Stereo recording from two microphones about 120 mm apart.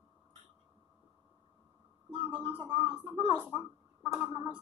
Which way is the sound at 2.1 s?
50° right (ahead or behind).